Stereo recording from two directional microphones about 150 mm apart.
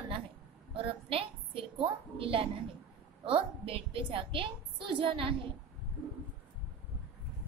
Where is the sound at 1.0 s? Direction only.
35° right (ahead or behind).